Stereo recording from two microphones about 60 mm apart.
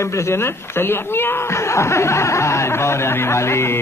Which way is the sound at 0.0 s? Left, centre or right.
Left.